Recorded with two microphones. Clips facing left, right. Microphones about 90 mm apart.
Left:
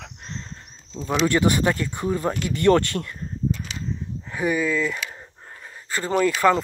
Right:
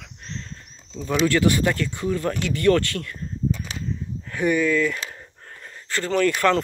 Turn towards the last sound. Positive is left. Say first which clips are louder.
# even
turn(degrees=10)  # may be behind; listen again after turning